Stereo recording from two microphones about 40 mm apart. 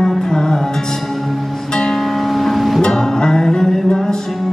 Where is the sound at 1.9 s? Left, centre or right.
Centre.